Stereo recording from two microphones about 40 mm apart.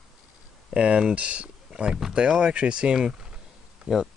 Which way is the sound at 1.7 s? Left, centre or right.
Right.